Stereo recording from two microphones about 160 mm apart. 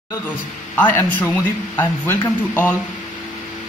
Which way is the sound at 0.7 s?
10° left (ahead or behind).